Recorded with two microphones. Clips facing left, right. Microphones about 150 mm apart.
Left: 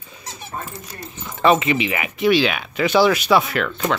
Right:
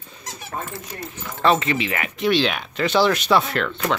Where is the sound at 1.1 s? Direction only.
15° left (ahead or behind).